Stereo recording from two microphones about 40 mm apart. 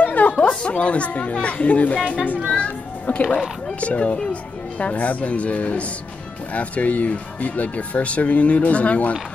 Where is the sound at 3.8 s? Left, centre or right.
Left.